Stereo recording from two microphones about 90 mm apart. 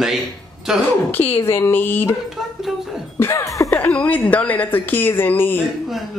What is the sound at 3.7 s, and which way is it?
A woman's voice, 15° left (ahead or behind).